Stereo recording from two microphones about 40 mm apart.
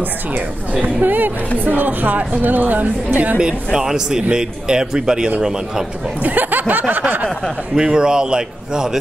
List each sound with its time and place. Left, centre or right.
1.0 s a woman's voice: right
3.3 s a man's voice: right
6.3 s a sound: right
6.7 s a woman's voice: right
7.7 s a man's voice: centre